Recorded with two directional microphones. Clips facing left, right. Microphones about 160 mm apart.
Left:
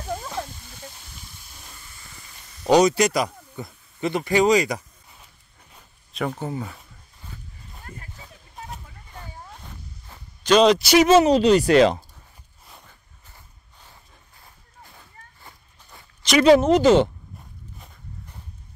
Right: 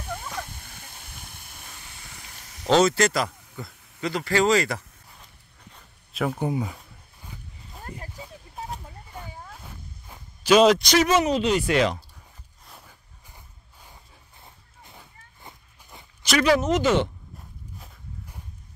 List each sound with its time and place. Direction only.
0.6 s hiss: 60° right (ahead or behind); by 2.6 s 75° right (ahead or behind)
2.6 s speech: 15° left (ahead or behind)
6.1 s speech: 10° right (ahead or behind)
7.9 s speech: 15° right (ahead or behind)
9.1 s a sound: 5° right (ahead or behind)
10.8 s speech: 10° left (ahead or behind)
11.1 s speech: 30° left (ahead or behind)
12.6 s a sound: centre (ahead or behind)
13.3 s a sound: 15° right (ahead or behind)
14.4 s walk: 20° right (ahead or behind)
16.3 s speech: 25° left (ahead or behind)
17.7 s walk: 5° right (ahead or behind)